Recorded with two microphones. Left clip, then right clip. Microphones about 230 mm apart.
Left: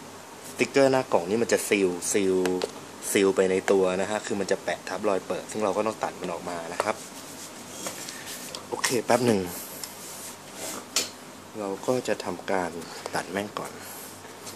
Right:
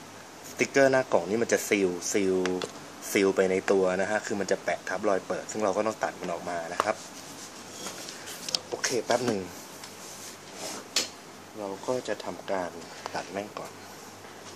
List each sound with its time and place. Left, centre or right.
0.6 s speech: centre
8.8 s speech: left
11.6 s speech: left
13.0 s speech: left